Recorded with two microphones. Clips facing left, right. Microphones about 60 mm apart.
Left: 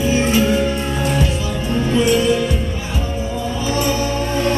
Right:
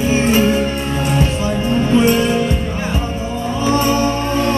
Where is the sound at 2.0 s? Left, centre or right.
Right.